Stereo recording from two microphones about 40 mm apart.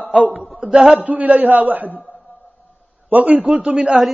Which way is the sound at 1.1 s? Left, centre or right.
Right.